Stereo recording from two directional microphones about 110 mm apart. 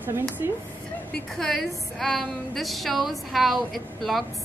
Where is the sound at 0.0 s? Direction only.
20° right (ahead or behind).